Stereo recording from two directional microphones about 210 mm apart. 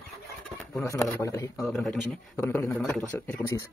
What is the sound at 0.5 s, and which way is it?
Speech, 15° left (ahead or behind).